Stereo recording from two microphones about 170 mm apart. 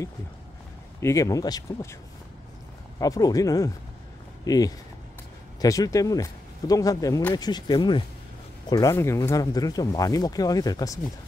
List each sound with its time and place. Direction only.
1.0 s speech: 20° left (ahead or behind)
3.0 s speech: 20° left (ahead or behind)